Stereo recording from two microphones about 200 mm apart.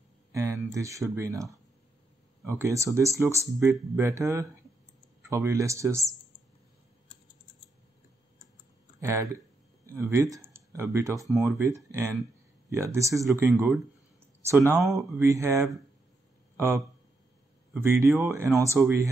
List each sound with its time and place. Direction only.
0.3 s a sound: 15° right (ahead or behind)
1.1 s speech: 15° right (ahead or behind)
9.0 s speech: 15° right (ahead or behind)
14.5 s speech: 15° right (ahead or behind)
14.8 s speech: centre (ahead or behind)
15.1 s speech: 15° right (ahead or behind)